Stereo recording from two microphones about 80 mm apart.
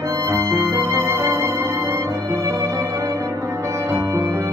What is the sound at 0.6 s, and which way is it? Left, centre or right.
Music, right.